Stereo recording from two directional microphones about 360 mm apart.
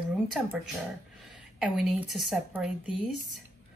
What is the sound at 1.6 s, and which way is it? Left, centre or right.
A woman's voice, centre.